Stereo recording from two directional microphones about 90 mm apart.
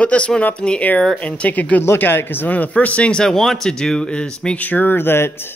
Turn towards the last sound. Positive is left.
turn(degrees=25)  # may be behind; listen again after turning